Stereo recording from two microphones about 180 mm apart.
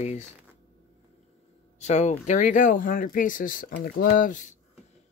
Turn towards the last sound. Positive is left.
turn(degrees=45)  # may be behind; listen again after turning